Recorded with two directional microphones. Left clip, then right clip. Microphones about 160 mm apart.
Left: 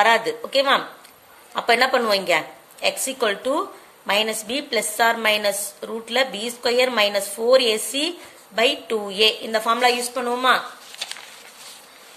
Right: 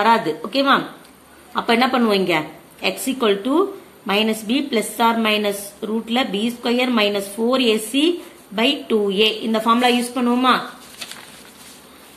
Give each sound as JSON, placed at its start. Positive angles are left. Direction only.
{"t": 0.0, "sound": "a woman's voice", "side_deg": 35}